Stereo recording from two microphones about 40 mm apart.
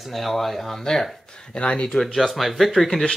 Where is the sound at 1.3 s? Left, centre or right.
Left.